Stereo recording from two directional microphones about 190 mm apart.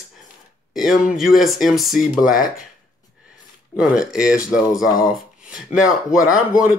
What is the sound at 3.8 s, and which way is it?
Speech, centre (ahead or behind).